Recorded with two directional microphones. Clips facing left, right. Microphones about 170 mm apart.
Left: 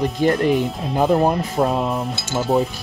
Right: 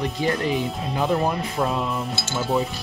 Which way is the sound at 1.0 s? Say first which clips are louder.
Left 6 dB; 45° left (ahead or behind).